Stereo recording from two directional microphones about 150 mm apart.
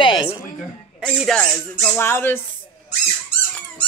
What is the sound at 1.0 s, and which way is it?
Speech, 5° left (ahead or behind).